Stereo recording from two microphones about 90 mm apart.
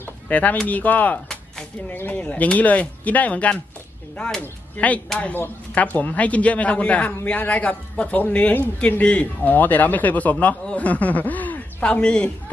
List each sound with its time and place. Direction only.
0.0 s a man's voice: 15° left (ahead or behind)